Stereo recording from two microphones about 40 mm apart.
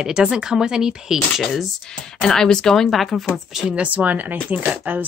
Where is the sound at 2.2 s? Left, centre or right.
Centre.